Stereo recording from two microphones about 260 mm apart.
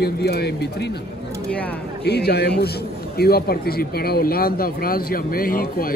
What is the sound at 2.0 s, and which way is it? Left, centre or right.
Speech, left.